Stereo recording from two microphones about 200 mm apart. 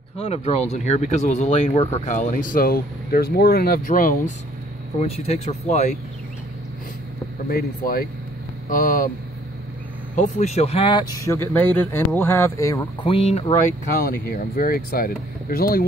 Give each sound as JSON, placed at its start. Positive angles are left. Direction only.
{"t": 0.2, "sound": "speech", "side_deg": 35}
{"t": 5.0, "sound": "speech", "side_deg": 30}
{"t": 7.4, "sound": "speech", "side_deg": 50}
{"t": 10.1, "sound": "speech", "side_deg": 35}
{"t": 11.3, "sound": "speech", "side_deg": 10}
{"t": 13.0, "sound": "speech", "side_deg": 30}
{"t": 13.9, "sound": "speech", "side_deg": 45}